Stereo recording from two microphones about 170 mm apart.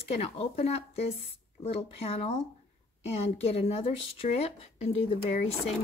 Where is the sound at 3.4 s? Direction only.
35° left (ahead or behind).